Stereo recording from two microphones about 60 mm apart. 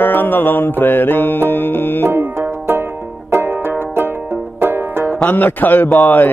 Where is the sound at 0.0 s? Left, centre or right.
Left.